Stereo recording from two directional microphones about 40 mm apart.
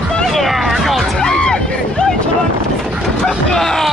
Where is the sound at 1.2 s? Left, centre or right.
Centre.